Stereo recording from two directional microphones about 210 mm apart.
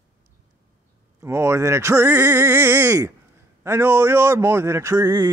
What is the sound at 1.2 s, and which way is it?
A man's voice, 15° right (ahead or behind).